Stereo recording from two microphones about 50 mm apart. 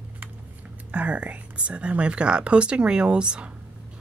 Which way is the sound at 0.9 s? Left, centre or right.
Right.